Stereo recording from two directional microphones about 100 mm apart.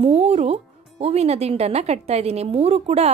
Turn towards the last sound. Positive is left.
turn(degrees=-90)